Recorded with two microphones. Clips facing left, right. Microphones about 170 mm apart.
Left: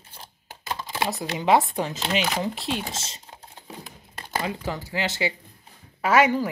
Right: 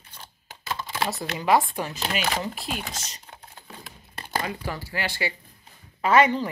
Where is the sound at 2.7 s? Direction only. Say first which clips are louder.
Left 4 dB; 25° left (ahead or behind).